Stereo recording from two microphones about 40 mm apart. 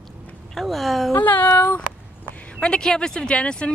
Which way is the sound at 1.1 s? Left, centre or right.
Left.